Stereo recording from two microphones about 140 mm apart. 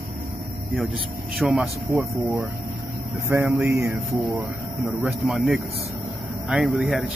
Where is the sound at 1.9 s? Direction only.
20° right (ahead or behind).